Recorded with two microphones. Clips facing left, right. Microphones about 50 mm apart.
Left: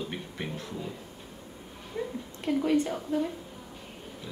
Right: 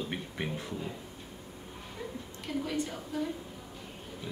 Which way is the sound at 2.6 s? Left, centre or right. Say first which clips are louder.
Left 11 dB; left.